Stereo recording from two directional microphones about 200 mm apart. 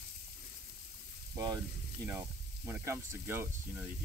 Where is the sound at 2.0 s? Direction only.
15° right (ahead or behind).